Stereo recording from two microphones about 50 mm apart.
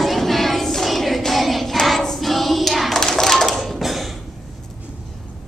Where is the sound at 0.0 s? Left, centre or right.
Centre.